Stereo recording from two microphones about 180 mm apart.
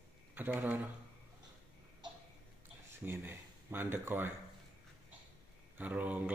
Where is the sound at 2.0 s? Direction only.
25° right (ahead or behind).